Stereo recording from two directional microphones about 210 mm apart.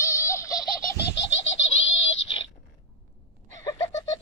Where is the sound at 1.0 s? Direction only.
55° left (ahead or behind).